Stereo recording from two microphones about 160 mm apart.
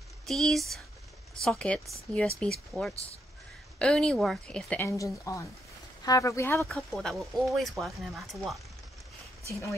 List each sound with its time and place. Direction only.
0.3 s speech: centre (ahead or behind)
6.7 s speech: centre (ahead or behind)
9.5 s speech: 20° left (ahead or behind)